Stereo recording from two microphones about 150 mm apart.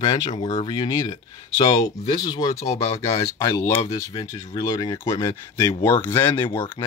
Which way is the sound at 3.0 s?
20° left (ahead or behind).